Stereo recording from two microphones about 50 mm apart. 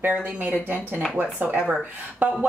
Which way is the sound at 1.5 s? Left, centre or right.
Centre.